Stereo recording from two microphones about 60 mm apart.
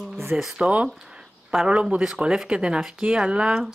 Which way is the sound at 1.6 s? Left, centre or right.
Centre.